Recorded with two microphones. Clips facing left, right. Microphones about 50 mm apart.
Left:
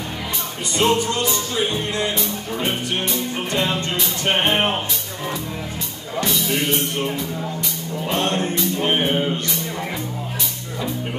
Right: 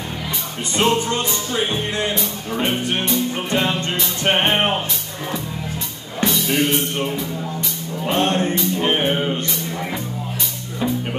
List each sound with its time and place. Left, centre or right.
0.7 s speech: right
2.5 s music: centre
4.2 s speech: right
6.2 s music: centre
8.2 s speech: right
8.7 s music: centre